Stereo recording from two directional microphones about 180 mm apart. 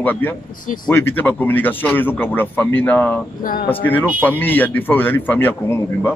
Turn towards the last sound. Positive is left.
turn(degrees=10)  # may be behind; listen again after turning